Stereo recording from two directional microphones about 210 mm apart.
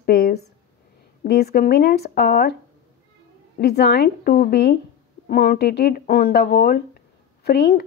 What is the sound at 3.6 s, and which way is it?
Speech, 50° left (ahead or behind).